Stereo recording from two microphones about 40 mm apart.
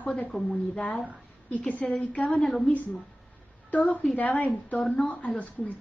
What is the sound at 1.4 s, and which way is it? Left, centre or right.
Speech, left.